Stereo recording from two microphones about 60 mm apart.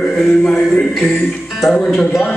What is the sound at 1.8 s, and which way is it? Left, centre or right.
Speech, centre.